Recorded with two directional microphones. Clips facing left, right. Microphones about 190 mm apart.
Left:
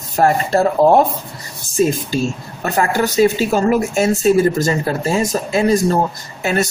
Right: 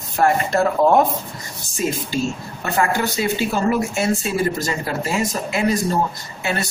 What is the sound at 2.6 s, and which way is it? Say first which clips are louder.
A man's voice: left 3 dB; 40° left (ahead or behind).